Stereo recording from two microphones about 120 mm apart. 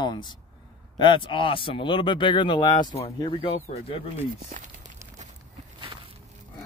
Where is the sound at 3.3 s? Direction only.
50° left (ahead or behind).